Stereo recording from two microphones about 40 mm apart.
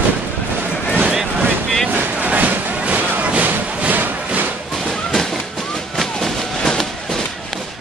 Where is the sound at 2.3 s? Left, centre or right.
Right.